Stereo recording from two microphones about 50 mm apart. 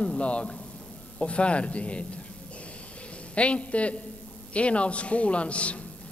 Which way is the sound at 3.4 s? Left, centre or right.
Left.